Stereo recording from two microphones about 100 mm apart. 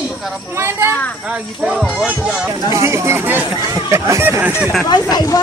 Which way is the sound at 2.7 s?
30° right (ahead or behind).